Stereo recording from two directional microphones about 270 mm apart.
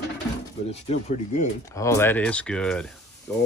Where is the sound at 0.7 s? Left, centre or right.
Left.